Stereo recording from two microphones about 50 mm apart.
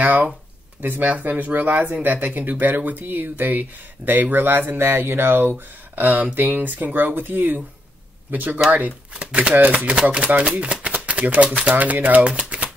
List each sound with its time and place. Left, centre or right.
0.0 s speech: right
5.9 s speech: right
10.5 s a sound: right
11.7 s speech: right